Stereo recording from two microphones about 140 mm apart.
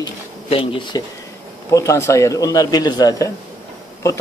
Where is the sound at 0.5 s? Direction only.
40° left (ahead or behind).